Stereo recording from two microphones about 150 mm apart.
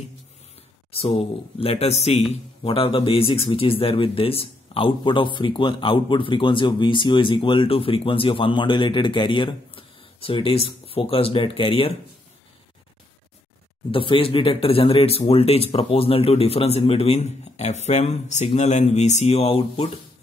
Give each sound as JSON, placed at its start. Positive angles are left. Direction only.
{"t": 0.9, "sound": "speech", "side_deg": 40}
{"t": 13.9, "sound": "a man's voice", "side_deg": 35}